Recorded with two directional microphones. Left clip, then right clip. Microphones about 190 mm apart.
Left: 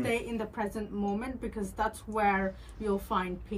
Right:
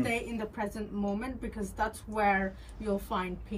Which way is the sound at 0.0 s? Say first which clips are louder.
Left 1 dB; 15° left (ahead or behind).